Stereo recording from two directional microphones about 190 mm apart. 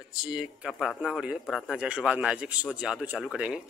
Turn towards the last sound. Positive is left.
turn(degrees=-5)  # may be behind; listen again after turning